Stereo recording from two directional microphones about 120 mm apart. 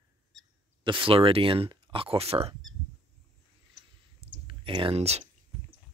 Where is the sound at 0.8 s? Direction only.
45° right (ahead or behind).